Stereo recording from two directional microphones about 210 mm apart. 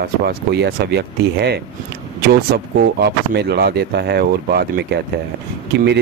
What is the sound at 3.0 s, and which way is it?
Speech, 50° right (ahead or behind).